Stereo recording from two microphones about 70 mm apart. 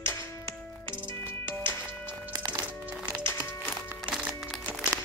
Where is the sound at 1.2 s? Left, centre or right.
Left.